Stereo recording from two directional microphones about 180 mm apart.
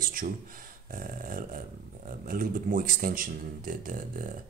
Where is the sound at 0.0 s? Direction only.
50° right (ahead or behind).